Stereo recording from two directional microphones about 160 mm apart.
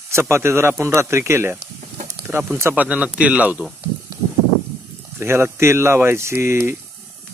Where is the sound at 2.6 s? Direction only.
15° right (ahead or behind).